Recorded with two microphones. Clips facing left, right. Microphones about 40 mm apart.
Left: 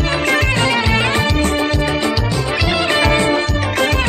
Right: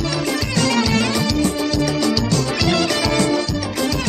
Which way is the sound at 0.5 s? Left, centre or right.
Left.